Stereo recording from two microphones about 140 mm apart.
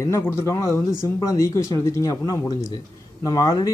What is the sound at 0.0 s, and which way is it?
Speech, 20° left (ahead or behind).